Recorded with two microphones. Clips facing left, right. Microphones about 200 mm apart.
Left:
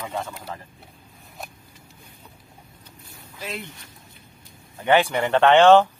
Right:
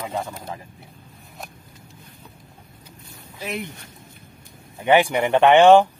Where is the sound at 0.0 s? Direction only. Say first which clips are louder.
Right 2 dB; 15° right (ahead or behind).